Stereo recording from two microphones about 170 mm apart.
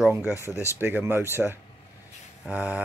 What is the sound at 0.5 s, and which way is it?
Speech, 15° left (ahead or behind).